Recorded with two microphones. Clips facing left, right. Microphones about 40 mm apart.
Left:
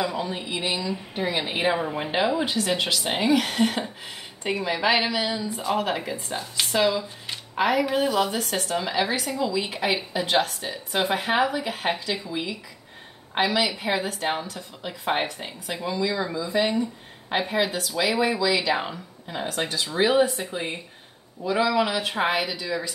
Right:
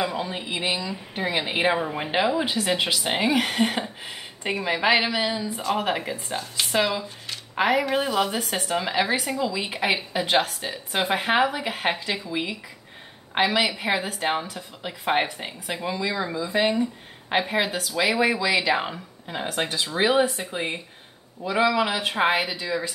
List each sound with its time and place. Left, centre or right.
0.5 s speech: right
0.7 s a woman's voice: centre
1.8 s a woman's voice: centre
19.4 s a woman's voice: right